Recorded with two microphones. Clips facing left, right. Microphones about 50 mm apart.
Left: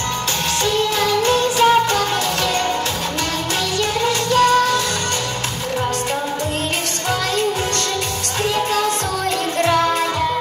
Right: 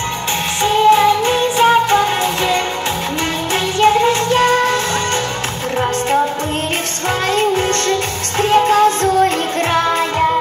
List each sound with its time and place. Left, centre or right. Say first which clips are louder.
0.6 s music: right 9 dB; right
3.8 s music: right 10 dB; right
7.1 s music: right 4 dB; right